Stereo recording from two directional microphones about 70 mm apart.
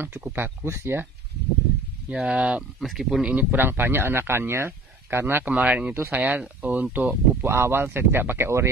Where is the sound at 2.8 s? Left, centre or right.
Centre.